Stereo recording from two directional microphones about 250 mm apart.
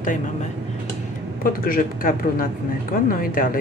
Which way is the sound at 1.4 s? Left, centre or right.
Left.